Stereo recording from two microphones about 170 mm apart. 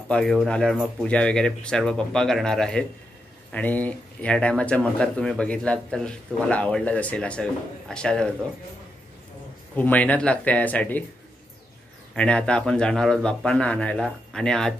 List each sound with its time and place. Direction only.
0.1 s speech: centre (ahead or behind)
9.8 s speech: 10° left (ahead or behind)
12.2 s speech: 5° left (ahead or behind)